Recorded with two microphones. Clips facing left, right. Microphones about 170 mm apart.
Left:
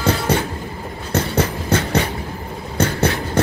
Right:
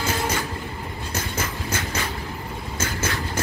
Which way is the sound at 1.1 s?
70° left (ahead or behind).